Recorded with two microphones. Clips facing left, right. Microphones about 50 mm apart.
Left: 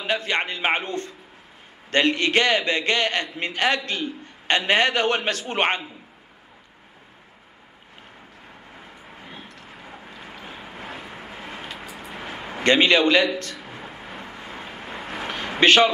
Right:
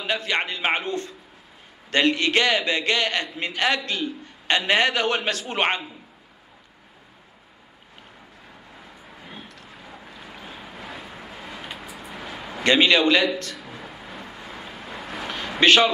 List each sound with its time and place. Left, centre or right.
0.0 s a man's voice: left
8.7 s vehicle: left
9.3 s a sound: left
10.2 s boat: left
10.7 s vehicle: left
11.0 s vehicle: left
11.2 s vehicle: left
11.9 s a sound: left